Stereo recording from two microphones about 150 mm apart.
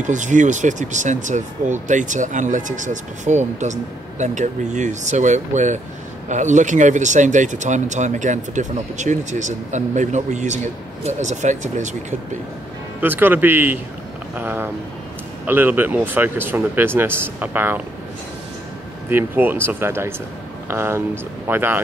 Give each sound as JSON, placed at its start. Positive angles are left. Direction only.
{"t": 0.0, "sound": "speech", "side_deg": -55}
{"t": 13.0, "sound": "speech", "side_deg": -15}
{"t": 19.0, "sound": "speech", "side_deg": -15}